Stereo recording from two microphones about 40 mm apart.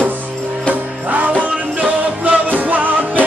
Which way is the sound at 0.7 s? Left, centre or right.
Right.